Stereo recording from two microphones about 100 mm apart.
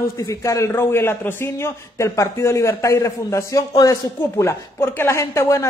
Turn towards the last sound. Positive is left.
turn(degrees=30)  # may be behind; listen again after turning